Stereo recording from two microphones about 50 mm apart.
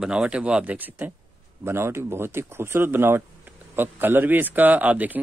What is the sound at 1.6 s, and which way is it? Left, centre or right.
Speech, right.